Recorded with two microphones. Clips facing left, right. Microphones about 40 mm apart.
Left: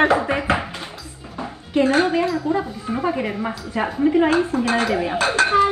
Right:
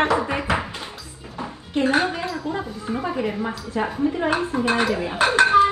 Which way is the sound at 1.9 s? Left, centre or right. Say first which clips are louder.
Left 4 dB; left.